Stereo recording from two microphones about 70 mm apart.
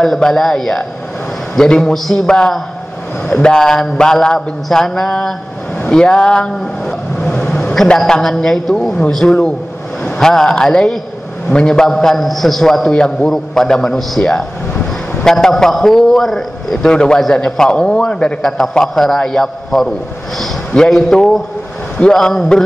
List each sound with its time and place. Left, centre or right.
0.0 s a man's voice: centre
7.2 s a sound: centre
7.7 s a man's voice: centre